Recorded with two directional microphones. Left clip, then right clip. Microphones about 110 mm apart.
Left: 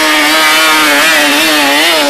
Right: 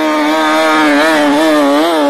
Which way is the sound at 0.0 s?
5° left (ahead or behind).